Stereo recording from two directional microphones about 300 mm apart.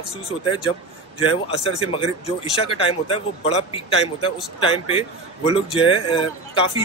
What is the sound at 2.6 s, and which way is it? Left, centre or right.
Speech, centre.